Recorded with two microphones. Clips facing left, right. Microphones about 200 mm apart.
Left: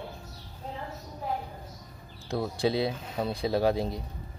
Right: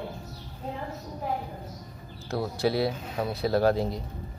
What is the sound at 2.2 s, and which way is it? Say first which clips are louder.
Speech: right 1 dB; 20° left (ahead or behind).